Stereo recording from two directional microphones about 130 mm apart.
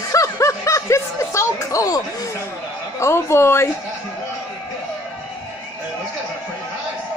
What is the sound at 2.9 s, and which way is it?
Speech, 20° left (ahead or behind).